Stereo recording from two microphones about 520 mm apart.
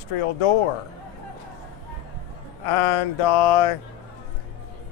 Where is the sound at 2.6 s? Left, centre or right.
Left.